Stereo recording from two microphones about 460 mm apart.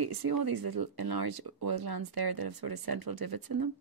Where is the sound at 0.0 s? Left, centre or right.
Right.